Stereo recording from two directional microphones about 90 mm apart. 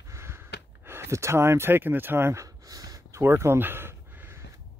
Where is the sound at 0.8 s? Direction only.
25° right (ahead or behind).